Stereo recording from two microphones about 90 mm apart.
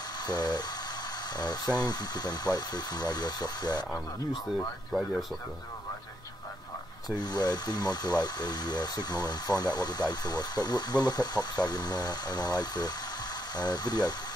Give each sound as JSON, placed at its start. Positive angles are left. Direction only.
{"t": 0.3, "sound": "speech", "side_deg": 50}
{"t": 7.1, "sound": "speech", "side_deg": 50}